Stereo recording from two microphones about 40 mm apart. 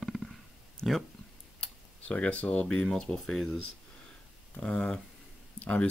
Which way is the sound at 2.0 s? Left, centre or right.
Left.